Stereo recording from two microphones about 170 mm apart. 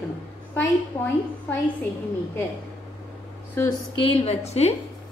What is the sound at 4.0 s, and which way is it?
Speech, 35° left (ahead or behind).